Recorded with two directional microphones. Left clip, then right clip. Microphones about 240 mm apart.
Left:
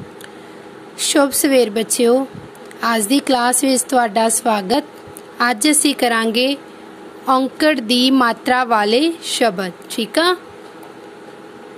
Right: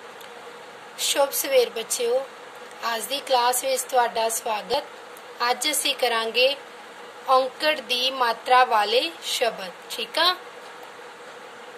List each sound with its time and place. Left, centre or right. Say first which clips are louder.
0.9 s a woman's voice: left 7 dB; left